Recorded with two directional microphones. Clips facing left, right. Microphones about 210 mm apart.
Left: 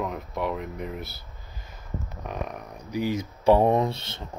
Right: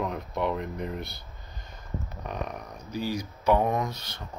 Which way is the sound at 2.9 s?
20° left (ahead or behind).